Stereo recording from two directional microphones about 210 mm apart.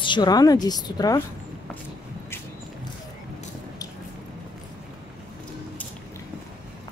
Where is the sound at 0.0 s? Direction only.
20° left (ahead or behind).